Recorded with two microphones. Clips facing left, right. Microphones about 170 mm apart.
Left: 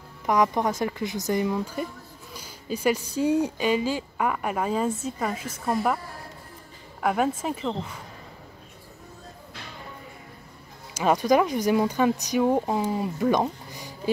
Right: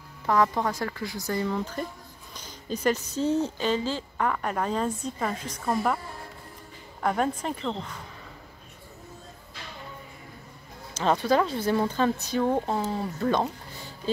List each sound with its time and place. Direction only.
0.3 s speech: 20° left (ahead or behind)
7.0 s speech: 5° left (ahead or behind)
11.0 s speech: 10° left (ahead or behind)